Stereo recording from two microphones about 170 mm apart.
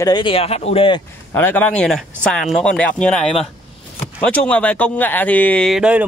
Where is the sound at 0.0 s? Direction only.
25° left (ahead or behind).